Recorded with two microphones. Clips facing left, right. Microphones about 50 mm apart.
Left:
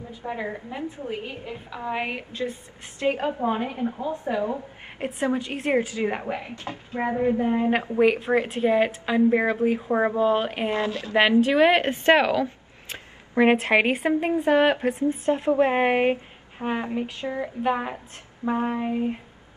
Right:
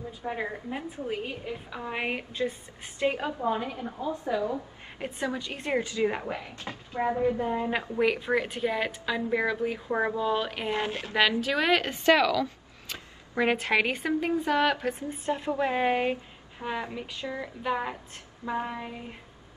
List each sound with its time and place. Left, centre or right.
0.2 s a woman's voice: centre
3.1 s a woman's voice: left
6.3 s a woman's voice: left
10.8 s a woman's voice: right
11.1 s a woman's voice: left